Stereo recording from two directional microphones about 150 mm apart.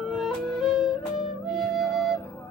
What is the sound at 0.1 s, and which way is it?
Music, centre (ahead or behind).